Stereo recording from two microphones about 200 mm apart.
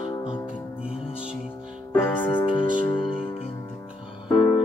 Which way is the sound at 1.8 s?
10° left (ahead or behind).